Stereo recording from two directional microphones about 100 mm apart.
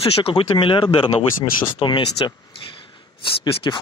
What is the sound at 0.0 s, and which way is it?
Speech, 70° left (ahead or behind).